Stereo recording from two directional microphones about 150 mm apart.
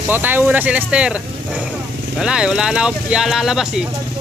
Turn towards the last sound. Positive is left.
turn(degrees=-5)  # may be behind; listen again after turning